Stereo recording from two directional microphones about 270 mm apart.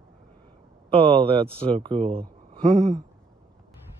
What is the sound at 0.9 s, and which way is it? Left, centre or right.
Speech, centre.